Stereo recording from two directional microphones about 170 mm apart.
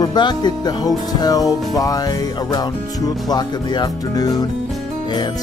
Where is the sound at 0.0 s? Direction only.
25° left (ahead or behind).